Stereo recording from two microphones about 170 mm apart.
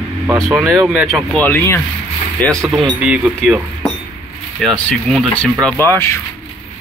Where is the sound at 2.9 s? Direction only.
5° right (ahead or behind); by 6.2 s 15° left (ahead or behind).